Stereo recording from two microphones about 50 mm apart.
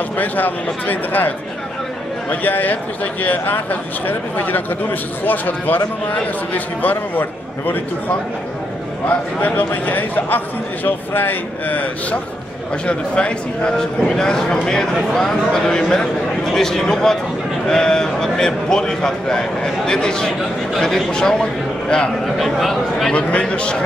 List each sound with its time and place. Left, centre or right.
0.2 s speech: left
2.4 s speech: left
9.8 s a man's voice: left; by 22.1 s centre
22.2 s a man's voice: centre
23.4 s a man's voice: centre